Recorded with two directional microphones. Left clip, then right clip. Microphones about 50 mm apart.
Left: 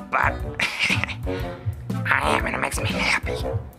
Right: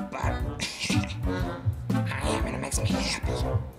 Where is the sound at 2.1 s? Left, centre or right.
Left.